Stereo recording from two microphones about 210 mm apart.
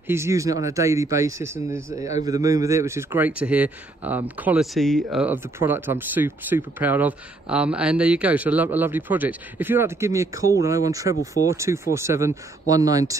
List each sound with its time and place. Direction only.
0.0 s speech: 10° right (ahead or behind)